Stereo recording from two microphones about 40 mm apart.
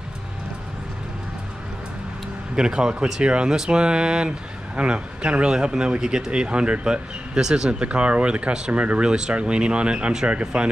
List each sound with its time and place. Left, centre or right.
2.5 s speech: centre
7.8 s speech: right